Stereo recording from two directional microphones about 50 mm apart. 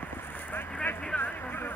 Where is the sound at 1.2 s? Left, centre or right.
Left.